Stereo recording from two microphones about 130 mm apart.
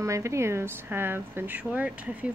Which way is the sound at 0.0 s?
25° right (ahead or behind).